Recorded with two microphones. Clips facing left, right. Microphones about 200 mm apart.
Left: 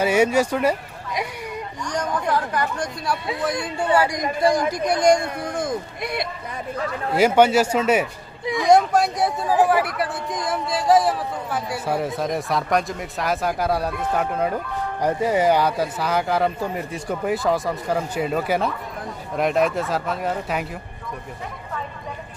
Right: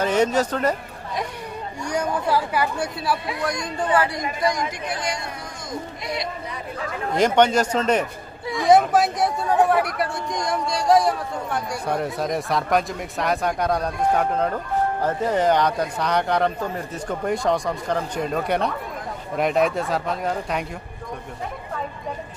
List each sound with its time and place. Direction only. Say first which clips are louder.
0.0 s speech: left 2 dB; 10° left (ahead or behind)
1.9 s speech: right 1 dB; 10° right (ahead or behind)
3.3 s speech: left 1 dB; 5° left (ahead or behind)
4.4 s speech: left 6 dB; 30° left (ahead or behind); by 6.2 s 55° left (ahead or behind)
7.1 s speech: left 2 dB; 5° left (ahead or behind)